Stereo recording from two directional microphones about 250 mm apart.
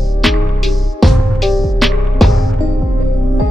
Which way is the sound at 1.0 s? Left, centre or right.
Centre.